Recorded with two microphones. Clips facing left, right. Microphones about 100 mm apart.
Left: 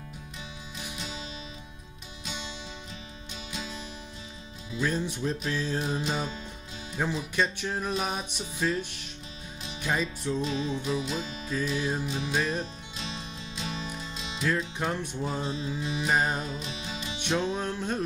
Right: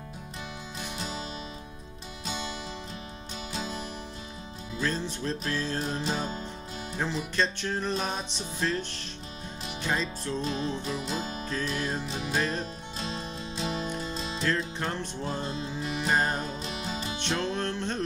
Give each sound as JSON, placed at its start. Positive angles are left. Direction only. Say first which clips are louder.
{"t": 0.9, "sound": "music", "louder": "right 4 dB", "side_deg": -40}
{"t": 3.5, "sound": "music", "louder": "right 3 dB", "side_deg": -40}
{"t": 4.7, "sound": "music", "louder": "left 2 dB", "side_deg": 15}
{"t": 10.4, "sound": "music", "louder": "left 1 dB", "side_deg": -45}
{"t": 11.4, "sound": "music", "louder": "left 5 dB", "side_deg": 5}
{"t": 12.9, "sound": "music", "louder": "right 6 dB", "side_deg": -40}
{"t": 14.4, "sound": "music", "louder": "left 2 dB", "side_deg": 10}
{"t": 16.5, "sound": "music", "louder": "right 2 dB", "side_deg": -40}
{"t": 17.2, "sound": "music", "louder": "left 3 dB", "side_deg": 10}